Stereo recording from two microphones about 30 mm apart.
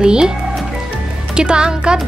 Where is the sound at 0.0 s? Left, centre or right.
Right.